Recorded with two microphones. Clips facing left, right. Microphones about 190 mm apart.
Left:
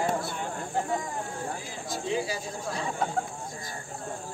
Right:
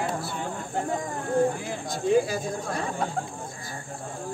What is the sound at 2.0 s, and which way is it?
Speech, 50° right (ahead or behind).